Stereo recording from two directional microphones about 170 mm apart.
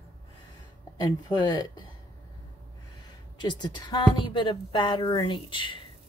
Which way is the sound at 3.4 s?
25° left (ahead or behind).